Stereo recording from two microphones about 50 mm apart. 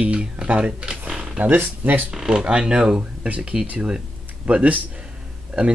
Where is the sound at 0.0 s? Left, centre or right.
Centre.